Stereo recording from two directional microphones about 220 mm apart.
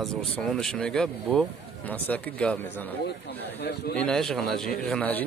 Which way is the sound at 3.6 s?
50° left (ahead or behind).